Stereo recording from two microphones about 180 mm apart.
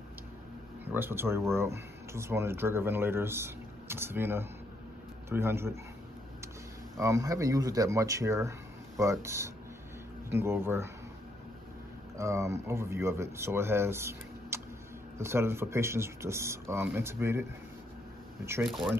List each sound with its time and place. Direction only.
0.9 s speech: 10° right (ahead or behind)
7.0 s speech: 20° right (ahead or behind)
12.2 s speech: 15° right (ahead or behind)
18.7 s speech: centre (ahead or behind)